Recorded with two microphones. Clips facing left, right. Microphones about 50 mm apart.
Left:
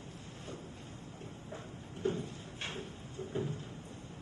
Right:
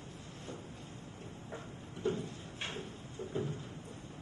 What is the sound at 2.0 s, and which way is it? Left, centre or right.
Cupboard open or close, left.